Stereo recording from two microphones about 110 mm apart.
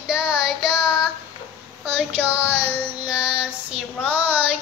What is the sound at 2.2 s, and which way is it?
Child singing, 15° right (ahead or behind).